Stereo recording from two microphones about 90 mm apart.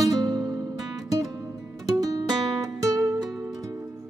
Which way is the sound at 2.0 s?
40° right (ahead or behind).